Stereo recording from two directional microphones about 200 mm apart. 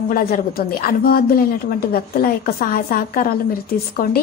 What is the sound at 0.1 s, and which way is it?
A woman's voice, 45° left (ahead or behind).